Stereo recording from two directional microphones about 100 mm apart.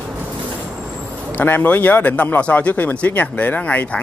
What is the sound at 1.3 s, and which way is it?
Speech, 20° left (ahead or behind).